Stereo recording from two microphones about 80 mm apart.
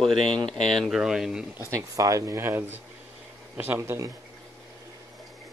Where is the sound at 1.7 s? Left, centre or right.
Right.